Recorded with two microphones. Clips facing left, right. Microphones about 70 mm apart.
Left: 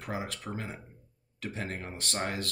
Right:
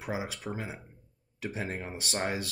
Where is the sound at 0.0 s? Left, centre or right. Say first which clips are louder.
Right 1 dB; centre.